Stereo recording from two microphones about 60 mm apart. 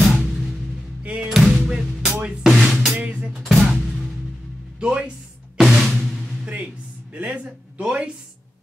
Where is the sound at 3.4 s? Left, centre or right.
Centre.